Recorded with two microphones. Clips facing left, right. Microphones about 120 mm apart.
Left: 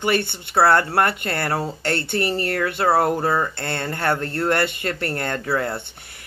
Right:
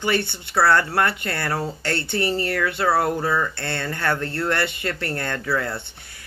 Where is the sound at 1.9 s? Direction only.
50° left (ahead or behind).